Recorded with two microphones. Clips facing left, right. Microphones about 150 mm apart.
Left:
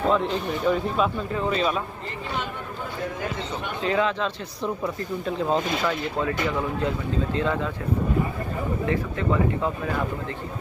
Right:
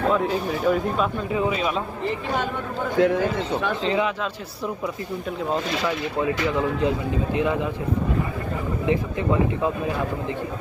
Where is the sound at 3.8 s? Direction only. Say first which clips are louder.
Left 2 dB; 20° right (ahead or behind).